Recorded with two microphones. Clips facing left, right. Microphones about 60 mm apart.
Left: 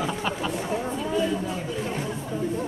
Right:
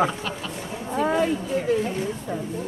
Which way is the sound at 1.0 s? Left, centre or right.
Right.